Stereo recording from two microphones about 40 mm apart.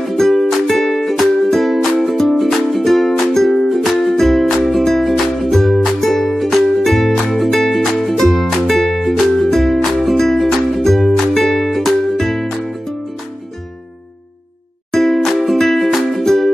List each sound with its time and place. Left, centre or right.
0.0 s music: centre
5.6 s music: centre
7.9 s music: centre
8.3 s music: centre
14.9 s music: centre